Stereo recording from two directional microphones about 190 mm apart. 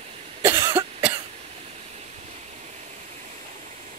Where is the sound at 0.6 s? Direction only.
25° right (ahead or behind).